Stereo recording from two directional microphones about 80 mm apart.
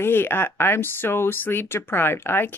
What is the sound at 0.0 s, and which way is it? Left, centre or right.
Speech, left.